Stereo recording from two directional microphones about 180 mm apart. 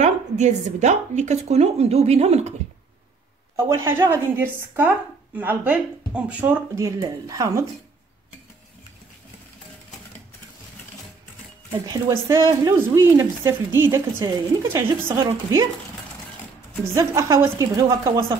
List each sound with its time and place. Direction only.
0.0 s a woman's voice: 40° right (ahead or behind)
3.5 s speech: 15° right (ahead or behind)
11.7 s speech: 20° right (ahead or behind)
16.8 s speech: 15° right (ahead or behind)